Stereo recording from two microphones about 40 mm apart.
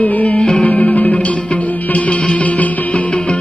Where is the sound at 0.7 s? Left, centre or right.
Left.